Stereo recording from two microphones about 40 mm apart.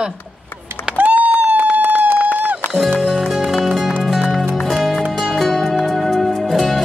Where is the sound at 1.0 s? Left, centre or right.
Right.